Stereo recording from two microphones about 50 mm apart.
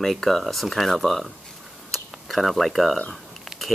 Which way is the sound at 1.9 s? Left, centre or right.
Centre.